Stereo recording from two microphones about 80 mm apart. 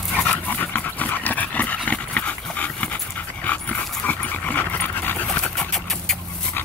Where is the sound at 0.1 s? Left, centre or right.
Centre.